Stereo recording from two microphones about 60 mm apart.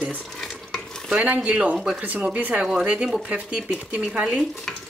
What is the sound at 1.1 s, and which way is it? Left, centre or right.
Speech, right.